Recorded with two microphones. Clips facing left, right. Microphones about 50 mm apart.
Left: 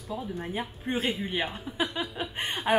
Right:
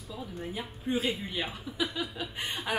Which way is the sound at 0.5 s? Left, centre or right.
Left.